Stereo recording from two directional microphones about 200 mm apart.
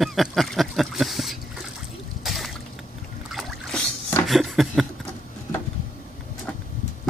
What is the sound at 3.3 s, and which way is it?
Boat, centre (ahead or behind).